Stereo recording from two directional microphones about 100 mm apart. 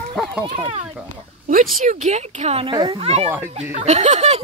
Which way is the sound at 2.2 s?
90° right.